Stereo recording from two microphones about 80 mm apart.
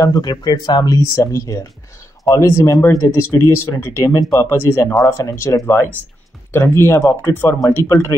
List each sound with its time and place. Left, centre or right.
0.0 s speech: left
1.1 s speech: left
4.9 s speech: left